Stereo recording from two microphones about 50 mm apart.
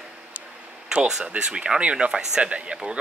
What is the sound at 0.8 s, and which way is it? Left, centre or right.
Speech, centre.